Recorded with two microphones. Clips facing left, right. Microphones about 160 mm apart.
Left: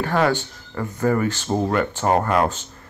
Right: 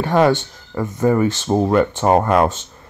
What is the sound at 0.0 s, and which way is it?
Speech, 20° right (ahead or behind).